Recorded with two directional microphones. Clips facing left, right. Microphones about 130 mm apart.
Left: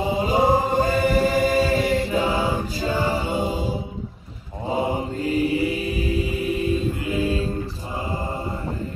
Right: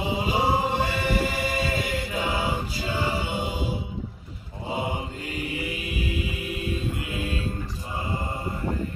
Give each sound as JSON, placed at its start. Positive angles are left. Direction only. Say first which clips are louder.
{"t": 0.0, "sound": "choir", "louder": "left 5 dB", "side_deg": 40}
{"t": 4.6, "sound": "mantra", "louder": "left 6 dB", "side_deg": 35}